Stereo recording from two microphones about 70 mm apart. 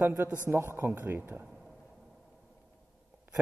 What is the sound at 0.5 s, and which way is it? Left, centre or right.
Speech, right.